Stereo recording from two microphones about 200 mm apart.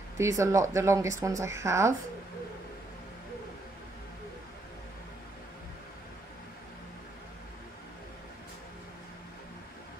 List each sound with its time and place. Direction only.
0.2 s speech: 15° right (ahead or behind)